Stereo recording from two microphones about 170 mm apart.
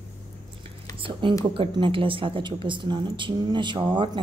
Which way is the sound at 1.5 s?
30° right (ahead or behind).